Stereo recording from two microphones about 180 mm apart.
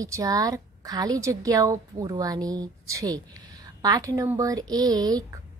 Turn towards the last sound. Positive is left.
turn(degrees=-20)  # may be behind; listen again after turning